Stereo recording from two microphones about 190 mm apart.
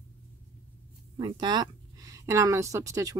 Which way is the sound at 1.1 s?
25° right (ahead or behind).